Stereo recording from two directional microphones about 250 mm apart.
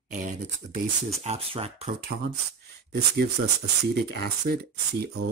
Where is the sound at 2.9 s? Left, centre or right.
Right.